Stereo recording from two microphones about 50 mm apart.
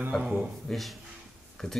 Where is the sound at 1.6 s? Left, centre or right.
Centre.